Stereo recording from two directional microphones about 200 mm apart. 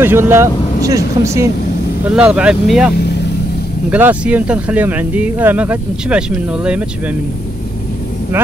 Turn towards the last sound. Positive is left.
turn(degrees=-5)  # may be behind; listen again after turning